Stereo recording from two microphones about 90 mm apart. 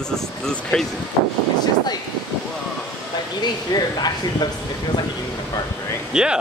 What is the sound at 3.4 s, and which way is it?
Speech, 50° left (ahead or behind).